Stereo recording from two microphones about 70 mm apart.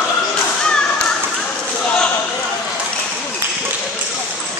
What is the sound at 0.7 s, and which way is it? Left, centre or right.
Whip, centre.